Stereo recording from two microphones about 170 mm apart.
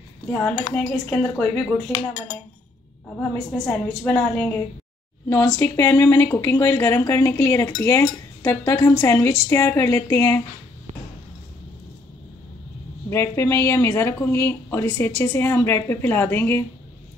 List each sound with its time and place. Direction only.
0.3 s speech: 10° left (ahead or behind)
3.2 s speech: 10° left (ahead or behind)
13.1 s speech: 15° left (ahead or behind)